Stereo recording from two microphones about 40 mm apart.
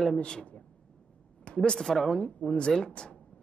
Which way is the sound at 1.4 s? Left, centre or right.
Left.